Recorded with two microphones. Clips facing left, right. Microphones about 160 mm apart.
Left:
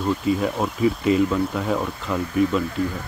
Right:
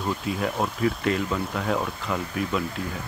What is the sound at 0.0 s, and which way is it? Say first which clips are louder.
Speech: left 6 dB; centre (ahead or behind).